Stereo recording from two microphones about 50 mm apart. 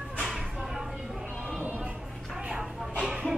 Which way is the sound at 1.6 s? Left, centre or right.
Right.